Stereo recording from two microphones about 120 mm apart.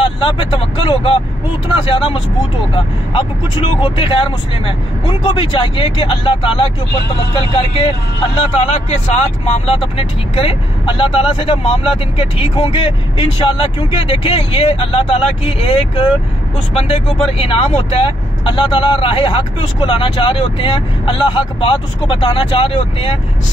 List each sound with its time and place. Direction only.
0.0 s speech: 45° left (ahead or behind); by 9.2 s 65° left (ahead or behind)
9.7 s speech: 55° left (ahead or behind)